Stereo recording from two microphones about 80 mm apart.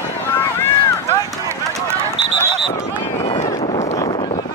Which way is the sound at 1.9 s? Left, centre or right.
Right.